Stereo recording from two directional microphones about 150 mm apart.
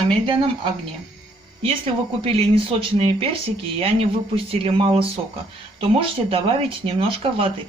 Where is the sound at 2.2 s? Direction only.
40° right (ahead or behind).